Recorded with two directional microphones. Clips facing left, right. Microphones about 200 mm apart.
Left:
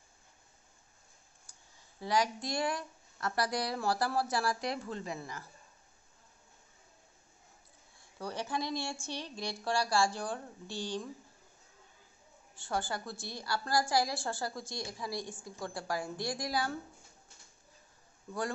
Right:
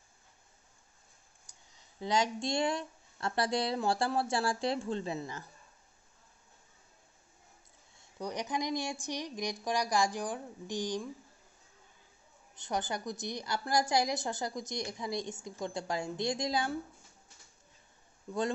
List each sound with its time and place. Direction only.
1.8 s a woman's voice: 20° right (ahead or behind)
8.0 s speech: 15° right (ahead or behind)
12.5 s a woman's voice: 20° right (ahead or behind)